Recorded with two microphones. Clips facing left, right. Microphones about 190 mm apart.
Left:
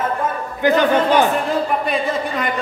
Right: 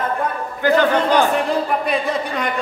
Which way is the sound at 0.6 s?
20° left (ahead or behind).